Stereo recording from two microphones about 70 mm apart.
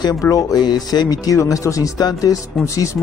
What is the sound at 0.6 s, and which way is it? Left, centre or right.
Speech, left.